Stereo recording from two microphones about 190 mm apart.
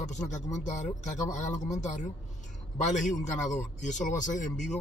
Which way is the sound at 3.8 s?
40° left (ahead or behind).